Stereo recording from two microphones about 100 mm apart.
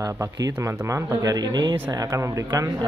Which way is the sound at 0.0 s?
35° right (ahead or behind).